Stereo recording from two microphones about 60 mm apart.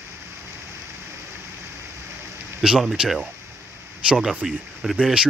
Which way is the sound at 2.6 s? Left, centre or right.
Centre.